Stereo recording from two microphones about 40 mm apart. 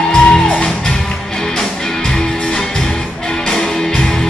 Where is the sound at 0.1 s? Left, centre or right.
Left.